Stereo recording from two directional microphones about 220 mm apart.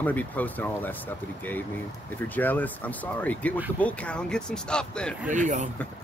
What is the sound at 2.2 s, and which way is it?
Speech, 10° left (ahead or behind).